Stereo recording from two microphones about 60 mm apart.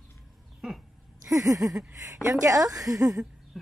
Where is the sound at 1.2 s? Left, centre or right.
Right.